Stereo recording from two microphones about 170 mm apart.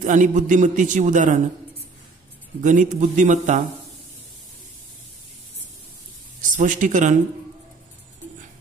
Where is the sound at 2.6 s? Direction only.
45° right (ahead or behind).